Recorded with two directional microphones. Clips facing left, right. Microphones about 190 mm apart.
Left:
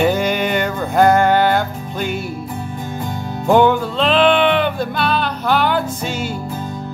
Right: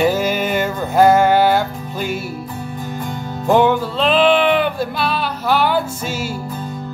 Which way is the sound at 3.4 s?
Centre (ahead or behind).